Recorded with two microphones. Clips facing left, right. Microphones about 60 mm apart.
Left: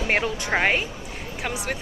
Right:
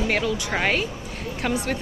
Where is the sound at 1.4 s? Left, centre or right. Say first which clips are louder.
Right 4 dB; centre.